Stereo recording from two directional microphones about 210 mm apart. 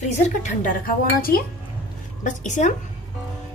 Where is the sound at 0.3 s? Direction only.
35° left (ahead or behind).